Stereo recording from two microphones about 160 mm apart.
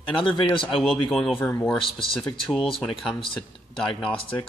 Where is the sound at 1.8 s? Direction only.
35° left (ahead or behind).